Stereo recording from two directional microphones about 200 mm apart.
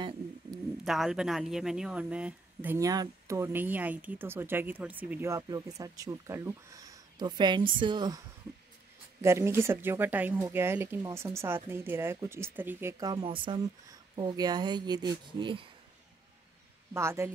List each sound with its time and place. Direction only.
0.8 s speech: centre (ahead or behind); by 8.2 s 20° right (ahead or behind)
9.2 s speech: 15° right (ahead or behind)
16.9 s speech: 15° right (ahead or behind)